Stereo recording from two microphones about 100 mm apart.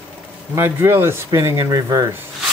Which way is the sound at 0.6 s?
25° right (ahead or behind).